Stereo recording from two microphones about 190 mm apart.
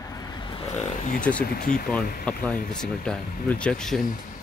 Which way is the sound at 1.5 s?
45° left (ahead or behind).